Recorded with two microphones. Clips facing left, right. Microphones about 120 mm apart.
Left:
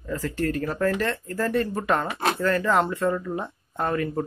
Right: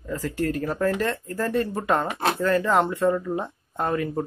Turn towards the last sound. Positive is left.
turn(degrees=-15)  # may be behind; listen again after turning